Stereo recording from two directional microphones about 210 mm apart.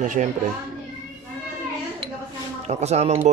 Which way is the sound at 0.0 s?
35° right (ahead or behind).